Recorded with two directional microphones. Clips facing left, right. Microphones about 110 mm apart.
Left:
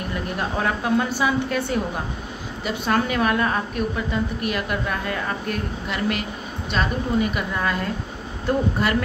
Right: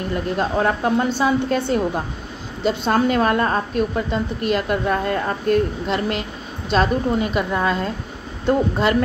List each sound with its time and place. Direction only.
0.4 s a woman's voice: 25° right (ahead or behind)